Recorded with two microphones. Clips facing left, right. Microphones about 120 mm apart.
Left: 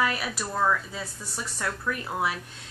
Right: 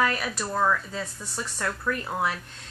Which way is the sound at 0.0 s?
10° left (ahead or behind).